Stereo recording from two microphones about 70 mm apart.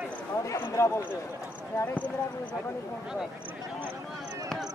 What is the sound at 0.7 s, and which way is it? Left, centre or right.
Speech, left.